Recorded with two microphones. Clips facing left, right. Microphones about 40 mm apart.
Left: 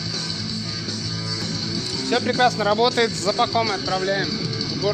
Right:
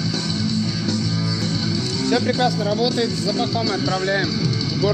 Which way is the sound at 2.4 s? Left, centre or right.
Left.